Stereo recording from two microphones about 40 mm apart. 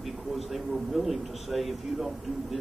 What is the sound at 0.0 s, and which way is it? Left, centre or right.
A man's voice, centre.